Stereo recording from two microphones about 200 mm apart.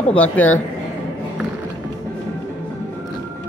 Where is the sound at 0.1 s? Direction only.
10° left (ahead or behind).